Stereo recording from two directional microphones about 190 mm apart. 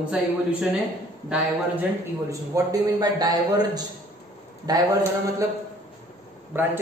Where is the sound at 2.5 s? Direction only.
20° right (ahead or behind).